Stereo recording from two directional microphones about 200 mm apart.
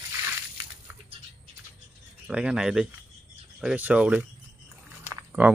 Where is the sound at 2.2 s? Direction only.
5° right (ahead or behind).